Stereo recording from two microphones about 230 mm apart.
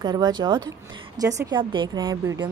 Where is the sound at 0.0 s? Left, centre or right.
Centre.